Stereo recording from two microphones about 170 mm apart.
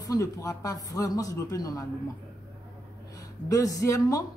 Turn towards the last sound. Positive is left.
turn(degrees=20)  # may be behind; listen again after turning